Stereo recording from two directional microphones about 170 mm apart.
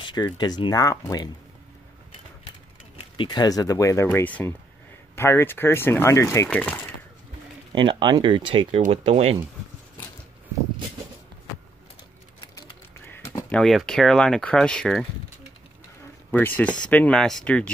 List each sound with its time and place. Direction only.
0.0 s speech: 25° left (ahead or behind)
3.0 s speech: 30° left (ahead or behind); by 6.9 s 10° left (ahead or behind)
7.7 s speech: 30° right (ahead or behind)
13.5 s speech: centre (ahead or behind)
16.3 s speech: 10° left (ahead or behind)